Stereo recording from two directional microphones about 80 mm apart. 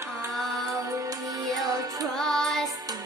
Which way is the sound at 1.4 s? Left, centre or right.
Right.